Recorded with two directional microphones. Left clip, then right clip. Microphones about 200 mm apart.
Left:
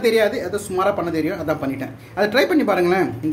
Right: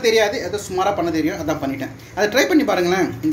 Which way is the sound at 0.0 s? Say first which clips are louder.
Right 1 dB; 25° left (ahead or behind).